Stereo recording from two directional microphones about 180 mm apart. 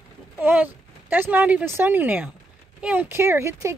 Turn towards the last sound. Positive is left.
turn(degrees=-15)  # may be behind; listen again after turning